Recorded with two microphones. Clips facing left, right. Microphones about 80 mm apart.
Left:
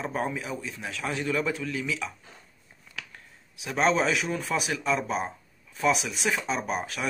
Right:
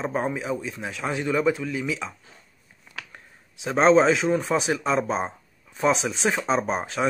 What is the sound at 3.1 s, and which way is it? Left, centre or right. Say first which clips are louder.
Speech: right 2 dB; right.